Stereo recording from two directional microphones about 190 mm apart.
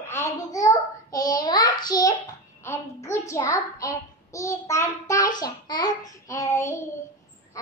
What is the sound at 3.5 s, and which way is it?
A child's voice, 15° left (ahead or behind).